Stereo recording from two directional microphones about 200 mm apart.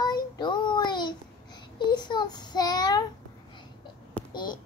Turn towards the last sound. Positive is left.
turn(degrees=20)  # may be behind; listen again after turning